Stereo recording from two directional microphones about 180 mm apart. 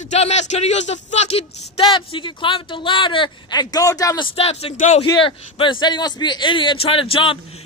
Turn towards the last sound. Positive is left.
turn(degrees=30)  # may be behind; listen again after turning